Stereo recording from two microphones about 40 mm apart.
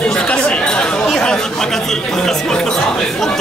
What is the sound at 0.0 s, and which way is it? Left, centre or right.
Chatter, left.